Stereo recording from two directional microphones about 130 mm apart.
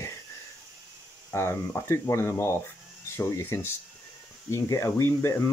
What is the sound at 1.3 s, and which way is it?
Speech, 20° left (ahead or behind).